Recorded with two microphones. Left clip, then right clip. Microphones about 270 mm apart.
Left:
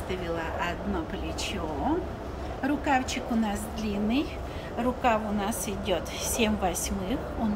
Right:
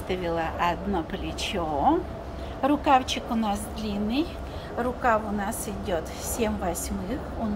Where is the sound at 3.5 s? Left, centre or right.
Centre.